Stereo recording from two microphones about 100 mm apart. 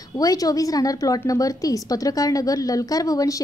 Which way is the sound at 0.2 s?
40° left (ahead or behind).